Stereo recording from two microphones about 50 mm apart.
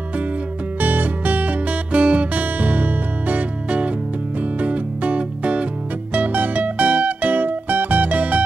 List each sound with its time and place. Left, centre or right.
0.7 s music: right